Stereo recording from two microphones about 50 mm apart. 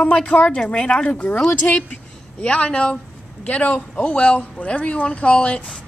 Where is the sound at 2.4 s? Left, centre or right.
Centre.